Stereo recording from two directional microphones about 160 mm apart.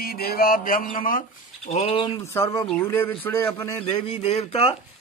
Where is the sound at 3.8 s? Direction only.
40° left (ahead or behind).